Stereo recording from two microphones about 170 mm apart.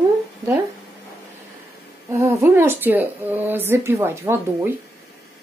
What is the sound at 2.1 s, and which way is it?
A woman's voice, 15° right (ahead or behind).